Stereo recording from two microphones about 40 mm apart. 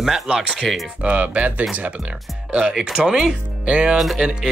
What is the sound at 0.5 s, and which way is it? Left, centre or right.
Speech, centre.